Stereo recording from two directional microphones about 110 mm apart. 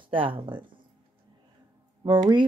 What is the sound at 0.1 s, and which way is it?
Speech, 50° right (ahead or behind).